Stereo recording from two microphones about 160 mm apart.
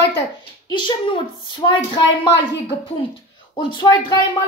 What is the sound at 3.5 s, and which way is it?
Speech, 30° left (ahead or behind).